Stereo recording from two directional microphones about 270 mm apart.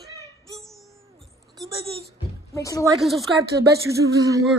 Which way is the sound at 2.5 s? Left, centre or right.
Centre.